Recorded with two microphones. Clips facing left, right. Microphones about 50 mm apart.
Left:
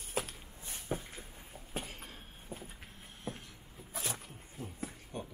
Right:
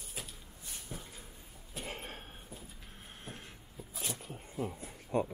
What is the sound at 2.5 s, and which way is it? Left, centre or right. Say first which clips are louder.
Vehicle: left 4 dB; left.